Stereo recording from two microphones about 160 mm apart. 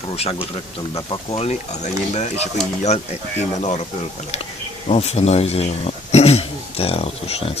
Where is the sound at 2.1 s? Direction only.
45° left (ahead or behind).